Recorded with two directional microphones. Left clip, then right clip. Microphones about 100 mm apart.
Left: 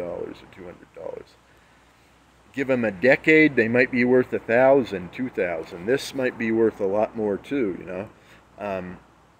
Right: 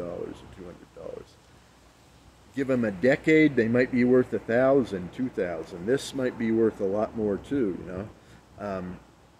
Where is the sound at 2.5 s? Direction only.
15° right (ahead or behind).